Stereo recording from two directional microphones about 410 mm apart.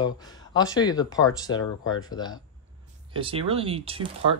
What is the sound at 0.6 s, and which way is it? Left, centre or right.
Speech, centre.